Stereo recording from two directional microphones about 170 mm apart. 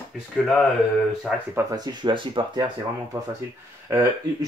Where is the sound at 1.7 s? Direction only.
25° right (ahead or behind).